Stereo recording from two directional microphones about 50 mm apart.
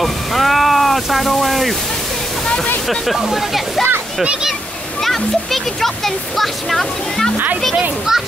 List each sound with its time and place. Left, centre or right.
0.0 s speech: centre
2.4 s waterfall: centre
2.9 s a child's voice: centre
4.2 s speech: centre
5.0 s a child's voice: centre
8.1 s a child's voice: centre